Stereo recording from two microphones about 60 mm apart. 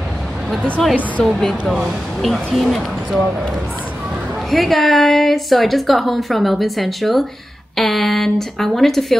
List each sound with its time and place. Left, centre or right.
1.2 s a woman's voice: centre
4.5 s a woman's voice: centre